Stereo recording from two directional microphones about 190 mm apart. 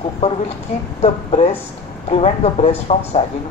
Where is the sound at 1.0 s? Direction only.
35° left (ahead or behind).